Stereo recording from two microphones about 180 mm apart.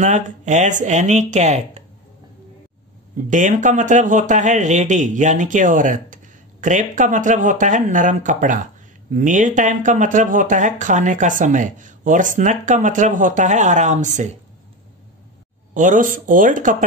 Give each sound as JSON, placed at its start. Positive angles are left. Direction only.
{"t": 0.0, "sound": "speech", "side_deg": -45}
{"t": 3.3, "sound": "speech", "side_deg": -45}
{"t": 15.7, "sound": "speech", "side_deg": -45}